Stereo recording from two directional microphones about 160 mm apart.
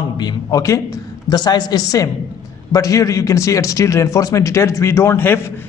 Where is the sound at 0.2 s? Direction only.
25° left (ahead or behind).